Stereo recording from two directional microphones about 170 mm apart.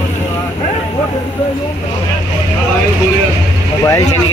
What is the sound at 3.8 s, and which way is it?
Vehicle, 15° left (ahead or behind).